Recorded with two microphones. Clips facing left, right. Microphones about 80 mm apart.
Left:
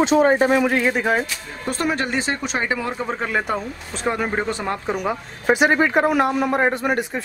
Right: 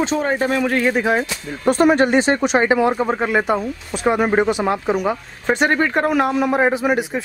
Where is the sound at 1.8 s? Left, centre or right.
Right; by 7.2 s centre.